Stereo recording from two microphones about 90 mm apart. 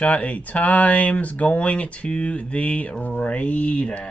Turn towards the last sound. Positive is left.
turn(degrees=15)  # may be behind; listen again after turning